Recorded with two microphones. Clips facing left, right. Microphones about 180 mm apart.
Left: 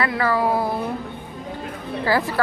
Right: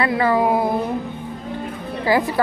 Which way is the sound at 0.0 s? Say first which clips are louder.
Right 3 dB; 25° right (ahead or behind).